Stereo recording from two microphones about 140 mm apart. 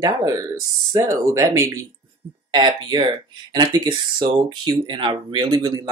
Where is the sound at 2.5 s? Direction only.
30° right (ahead or behind).